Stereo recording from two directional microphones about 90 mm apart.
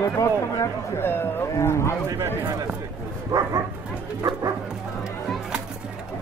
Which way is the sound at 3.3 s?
40° right (ahead or behind).